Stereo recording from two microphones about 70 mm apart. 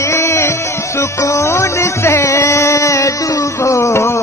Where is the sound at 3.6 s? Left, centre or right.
Left.